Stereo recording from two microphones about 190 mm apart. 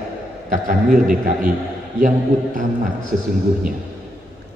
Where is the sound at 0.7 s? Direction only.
45° right (ahead or behind).